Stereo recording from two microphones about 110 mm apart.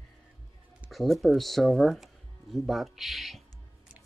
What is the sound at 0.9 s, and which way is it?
Speech, centre (ahead or behind).